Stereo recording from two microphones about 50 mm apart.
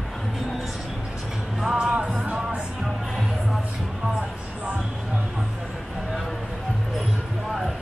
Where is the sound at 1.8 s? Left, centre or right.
Centre.